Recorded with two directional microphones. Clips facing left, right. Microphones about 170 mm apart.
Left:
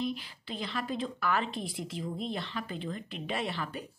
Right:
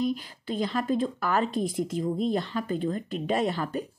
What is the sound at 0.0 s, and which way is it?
Speech, 45° right (ahead or behind).